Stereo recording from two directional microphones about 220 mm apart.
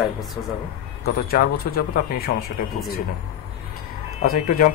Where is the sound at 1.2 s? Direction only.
40° left (ahead or behind).